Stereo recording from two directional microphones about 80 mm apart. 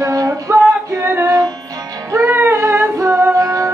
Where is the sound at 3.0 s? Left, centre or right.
Right.